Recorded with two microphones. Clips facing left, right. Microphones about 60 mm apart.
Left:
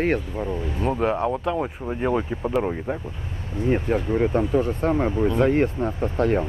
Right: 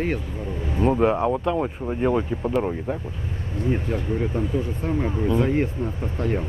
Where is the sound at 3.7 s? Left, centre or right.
Left.